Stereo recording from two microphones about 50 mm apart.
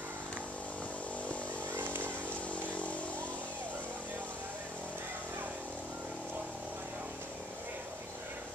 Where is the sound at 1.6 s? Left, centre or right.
Right.